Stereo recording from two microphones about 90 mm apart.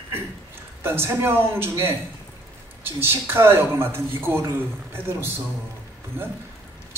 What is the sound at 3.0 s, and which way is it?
Speech, 25° right (ahead or behind).